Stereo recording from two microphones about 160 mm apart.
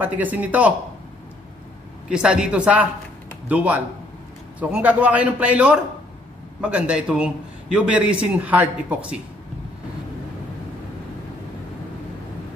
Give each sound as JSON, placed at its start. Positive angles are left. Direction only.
{"t": 0.0, "sound": "a man's voice", "side_deg": -10}
{"t": 2.0, "sound": "a man's voice", "side_deg": -5}